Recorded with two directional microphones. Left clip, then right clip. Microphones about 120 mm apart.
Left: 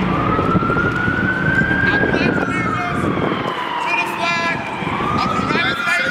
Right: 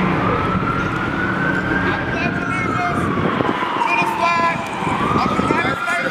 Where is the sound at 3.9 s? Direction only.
15° left (ahead or behind).